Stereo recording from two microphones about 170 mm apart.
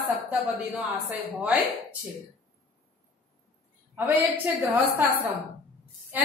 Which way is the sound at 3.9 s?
10° right (ahead or behind).